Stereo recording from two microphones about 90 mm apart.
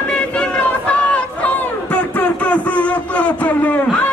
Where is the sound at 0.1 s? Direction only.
10° left (ahead or behind).